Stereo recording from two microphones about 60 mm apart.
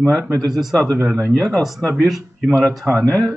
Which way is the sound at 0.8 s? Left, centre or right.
Centre.